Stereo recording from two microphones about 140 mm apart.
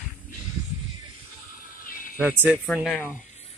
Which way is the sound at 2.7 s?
Centre (ahead or behind).